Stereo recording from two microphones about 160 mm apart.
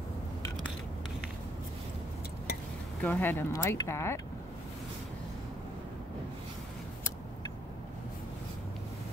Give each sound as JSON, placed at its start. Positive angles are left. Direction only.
{"t": 3.0, "sound": "speech", "side_deg": 10}